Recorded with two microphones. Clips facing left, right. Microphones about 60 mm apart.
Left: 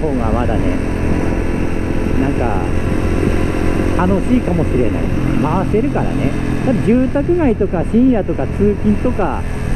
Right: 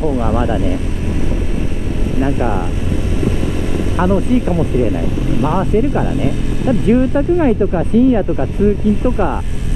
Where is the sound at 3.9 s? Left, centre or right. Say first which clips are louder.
Right 2 dB; left.